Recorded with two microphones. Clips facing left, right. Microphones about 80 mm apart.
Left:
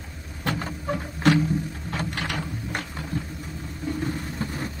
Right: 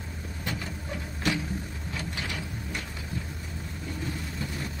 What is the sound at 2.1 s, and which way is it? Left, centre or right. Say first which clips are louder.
Ratchet: left 5 dB; left.